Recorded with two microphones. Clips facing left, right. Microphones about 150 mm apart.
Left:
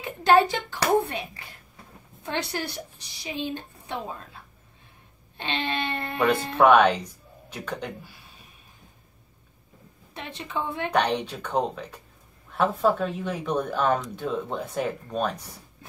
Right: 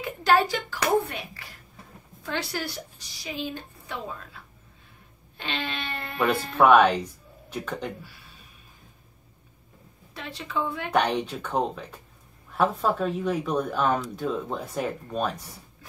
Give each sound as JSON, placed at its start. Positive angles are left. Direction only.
{"t": 0.2, "sound": "a child's voice", "side_deg": 25}
{"t": 5.4, "sound": "a sound", "side_deg": 25}
{"t": 6.6, "sound": "speech", "side_deg": 0}
{"t": 10.1, "sound": "a child's voice", "side_deg": 20}
{"t": 10.9, "sound": "speech", "side_deg": 0}